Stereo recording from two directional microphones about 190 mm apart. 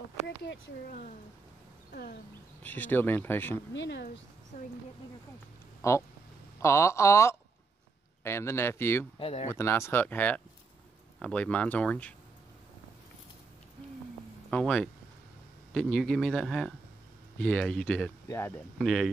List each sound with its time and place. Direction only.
0.4 s speech: 65° left (ahead or behind)
1.9 s speech: 50° left (ahead or behind)
2.6 s speech: 10° left (ahead or behind)
3.7 s speech: 65° left (ahead or behind)
5.8 s a sound: 15° left (ahead or behind)
6.6 s speech: 15° left (ahead or behind)
9.2 s speech: 30° left (ahead or behind)
9.5 s speech: 15° left (ahead or behind)
14.5 s speech: 5° left (ahead or behind)